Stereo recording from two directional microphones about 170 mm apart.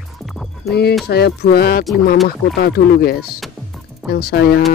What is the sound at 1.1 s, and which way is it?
Speech, 70° left (ahead or behind).